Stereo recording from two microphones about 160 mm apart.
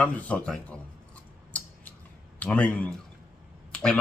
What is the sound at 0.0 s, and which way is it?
Speech, 10° left (ahead or behind).